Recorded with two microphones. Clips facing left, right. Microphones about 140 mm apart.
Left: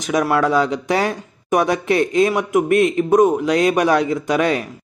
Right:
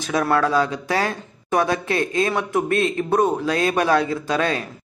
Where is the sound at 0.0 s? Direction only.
15° left (ahead or behind).